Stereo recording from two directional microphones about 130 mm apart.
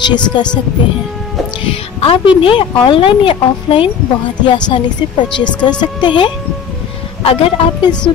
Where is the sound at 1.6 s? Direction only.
45° left (ahead or behind).